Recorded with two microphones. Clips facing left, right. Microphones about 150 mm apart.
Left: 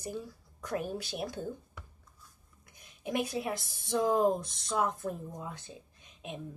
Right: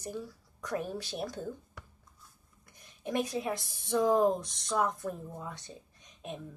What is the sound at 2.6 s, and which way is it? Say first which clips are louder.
Speech: even; 5° left (ahead or behind).